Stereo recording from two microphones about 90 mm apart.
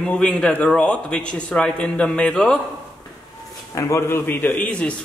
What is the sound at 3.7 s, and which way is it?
A man's voice, 30° left (ahead or behind).